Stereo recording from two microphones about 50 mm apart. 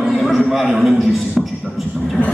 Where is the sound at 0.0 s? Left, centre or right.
Centre.